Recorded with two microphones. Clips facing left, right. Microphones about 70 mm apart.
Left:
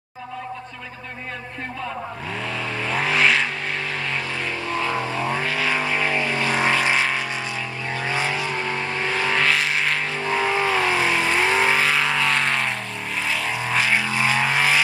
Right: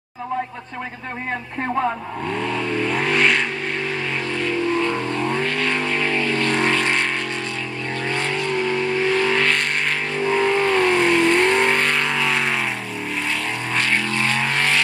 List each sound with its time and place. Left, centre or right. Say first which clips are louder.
2.4 s vehicle: right 4 dB; centre
8.1 s vehicle: right 2 dB; centre
13.7 s vehicle: even; centre